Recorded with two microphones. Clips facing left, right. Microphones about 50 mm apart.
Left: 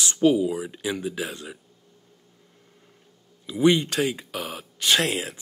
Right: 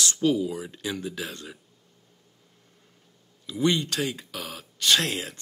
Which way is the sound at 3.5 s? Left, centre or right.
Centre.